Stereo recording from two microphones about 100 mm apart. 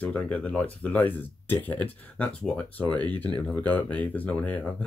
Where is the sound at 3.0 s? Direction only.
45° right (ahead or behind).